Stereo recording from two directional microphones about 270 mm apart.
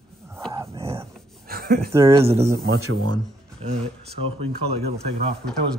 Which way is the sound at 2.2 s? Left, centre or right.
Right.